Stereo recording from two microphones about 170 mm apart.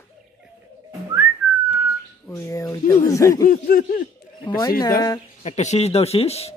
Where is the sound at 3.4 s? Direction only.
55° left (ahead or behind).